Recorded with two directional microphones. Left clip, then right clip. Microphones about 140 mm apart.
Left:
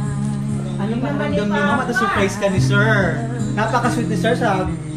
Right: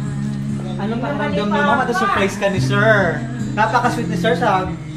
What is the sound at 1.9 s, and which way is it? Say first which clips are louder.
Speech: right 1 dB; 85° right.